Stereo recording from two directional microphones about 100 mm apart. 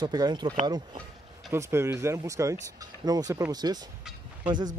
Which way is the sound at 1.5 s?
25° right (ahead or behind).